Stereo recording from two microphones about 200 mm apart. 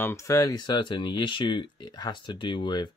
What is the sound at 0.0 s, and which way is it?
Speech, 15° left (ahead or behind).